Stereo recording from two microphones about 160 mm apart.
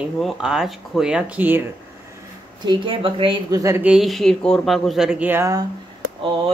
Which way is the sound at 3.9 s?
Centre (ahead or behind).